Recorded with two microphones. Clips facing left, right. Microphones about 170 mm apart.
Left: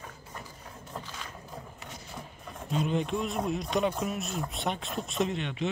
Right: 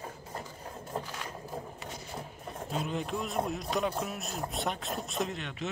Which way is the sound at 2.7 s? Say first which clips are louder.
Left 5 dB; 5° right (ahead or behind).